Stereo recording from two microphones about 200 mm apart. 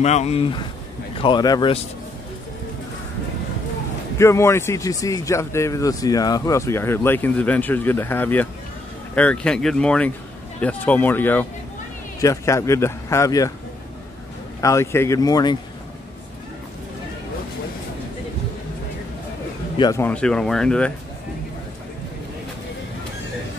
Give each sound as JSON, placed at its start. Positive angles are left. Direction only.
{"t": 0.0, "sound": "speech", "side_deg": 35}
{"t": 4.2, "sound": "a man's voice", "side_deg": 15}
{"t": 14.6, "sound": "a man's voice", "side_deg": 15}
{"t": 19.8, "sound": "speech", "side_deg": 15}